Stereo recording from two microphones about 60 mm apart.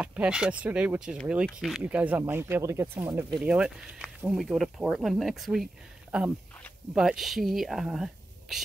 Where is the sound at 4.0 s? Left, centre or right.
Centre.